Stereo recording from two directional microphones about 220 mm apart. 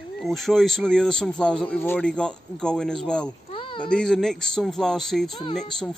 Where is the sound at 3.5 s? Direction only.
25° left (ahead or behind).